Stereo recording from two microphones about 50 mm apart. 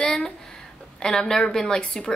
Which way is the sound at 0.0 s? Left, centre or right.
Centre.